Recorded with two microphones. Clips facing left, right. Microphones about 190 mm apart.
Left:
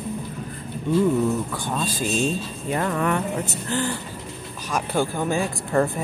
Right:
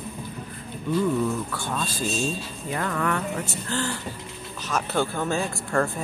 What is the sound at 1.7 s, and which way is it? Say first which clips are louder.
A man's voice: left 3 dB; 15° left (ahead or behind).